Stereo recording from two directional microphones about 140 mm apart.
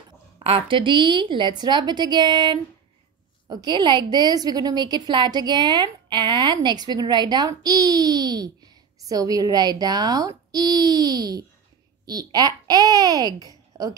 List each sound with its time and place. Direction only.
0.4 s a woman's voice: 40° right (ahead or behind)